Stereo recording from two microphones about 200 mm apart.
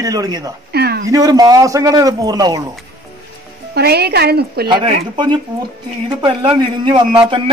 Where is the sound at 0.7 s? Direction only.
55° right (ahead or behind).